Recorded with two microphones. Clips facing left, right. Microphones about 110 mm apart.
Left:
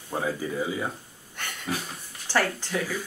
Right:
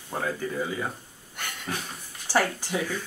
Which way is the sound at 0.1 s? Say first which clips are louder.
Left 1 dB; 10° left (ahead or behind).